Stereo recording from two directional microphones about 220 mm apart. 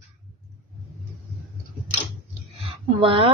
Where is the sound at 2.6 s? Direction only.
25° right (ahead or behind).